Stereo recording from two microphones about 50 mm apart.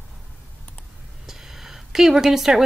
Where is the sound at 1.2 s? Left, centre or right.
Centre.